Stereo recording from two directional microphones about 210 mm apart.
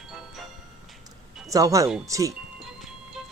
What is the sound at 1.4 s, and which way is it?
Speech, 15° right (ahead or behind).